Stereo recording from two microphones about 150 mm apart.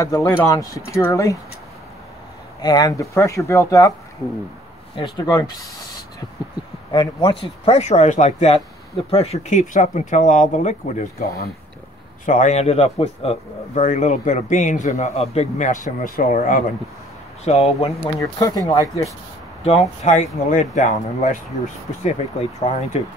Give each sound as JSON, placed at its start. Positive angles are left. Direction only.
{"t": 0.0, "sound": "speech", "side_deg": 20}
{"t": 2.6, "sound": "speech", "side_deg": 25}
{"t": 4.9, "sound": "speech", "side_deg": 30}
{"t": 6.9, "sound": "speech", "side_deg": 30}
{"t": 11.1, "sound": "speech", "side_deg": 85}
{"t": 12.3, "sound": "speech", "side_deg": 55}
{"t": 13.7, "sound": "a man's voice", "side_deg": 55}
{"t": 17.5, "sound": "speech", "side_deg": 45}
{"t": 18.2, "sound": "speech", "side_deg": 25}
{"t": 19.6, "sound": "a man's voice", "side_deg": 45}